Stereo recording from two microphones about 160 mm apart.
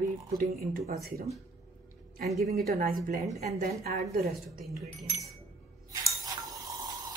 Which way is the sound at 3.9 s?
75° right (ahead or behind).